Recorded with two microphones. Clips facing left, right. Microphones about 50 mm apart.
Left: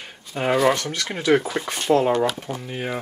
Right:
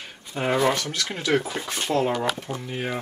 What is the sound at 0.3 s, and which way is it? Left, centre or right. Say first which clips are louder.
Speech: left 3 dB; centre.